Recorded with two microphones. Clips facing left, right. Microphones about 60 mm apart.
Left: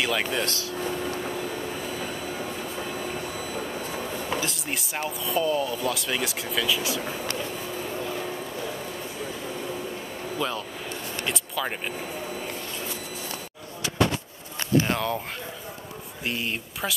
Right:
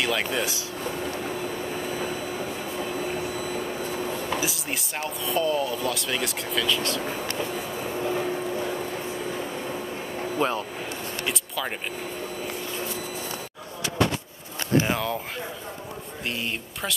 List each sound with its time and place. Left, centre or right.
0.0 s speech: centre
0.8 s a sound: centre
4.4 s speech: centre
10.4 s speech: right
11.2 s vehicle: centre
14.9 s speech: centre
16.3 s speech: centre